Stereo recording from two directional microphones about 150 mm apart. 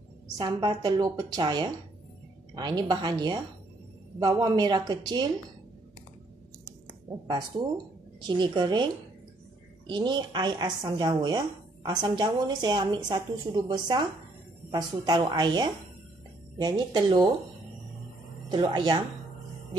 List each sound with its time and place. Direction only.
0.4 s a woman's voice: 25° right (ahead or behind)
7.2 s a woman's voice: 30° right (ahead or behind)
9.8 s a woman's voice: 30° right (ahead or behind)
18.5 s a woman's voice: 30° right (ahead or behind)